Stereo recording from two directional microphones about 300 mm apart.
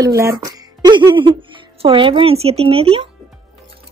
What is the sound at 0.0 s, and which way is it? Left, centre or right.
A woman's voice, centre.